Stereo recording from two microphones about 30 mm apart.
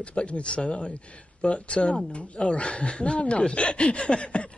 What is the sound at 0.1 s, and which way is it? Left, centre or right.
Speech, left.